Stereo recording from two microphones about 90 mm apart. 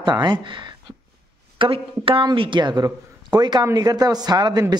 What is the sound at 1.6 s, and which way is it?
Speech, 80° right.